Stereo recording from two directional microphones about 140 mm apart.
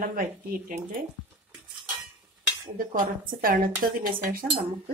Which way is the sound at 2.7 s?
85° right.